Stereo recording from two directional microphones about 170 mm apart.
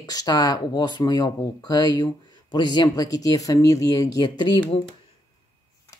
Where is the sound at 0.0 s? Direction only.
20° left (ahead or behind).